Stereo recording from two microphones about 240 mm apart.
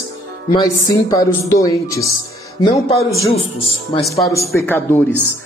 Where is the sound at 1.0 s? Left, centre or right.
Centre.